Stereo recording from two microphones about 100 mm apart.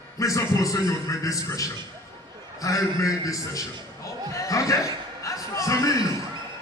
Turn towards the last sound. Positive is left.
turn(degrees=35)  # may be behind; listen again after turning